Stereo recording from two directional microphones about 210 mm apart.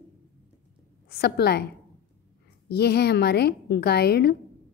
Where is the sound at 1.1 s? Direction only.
50° left (ahead or behind).